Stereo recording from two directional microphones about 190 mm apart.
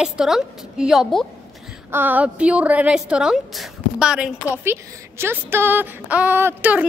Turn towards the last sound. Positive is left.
turn(degrees=-10)  # may be behind; listen again after turning